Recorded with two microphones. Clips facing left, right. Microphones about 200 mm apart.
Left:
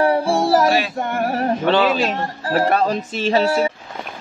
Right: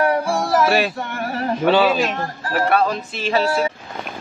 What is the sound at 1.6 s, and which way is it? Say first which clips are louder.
Speech: right 3 dB; 10° right (ahead or behind).